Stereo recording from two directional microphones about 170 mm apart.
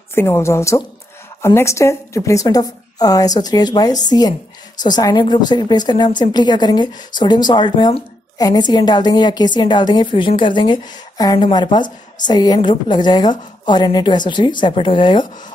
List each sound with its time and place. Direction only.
0.1 s a woman's voice: 15° left (ahead or behind)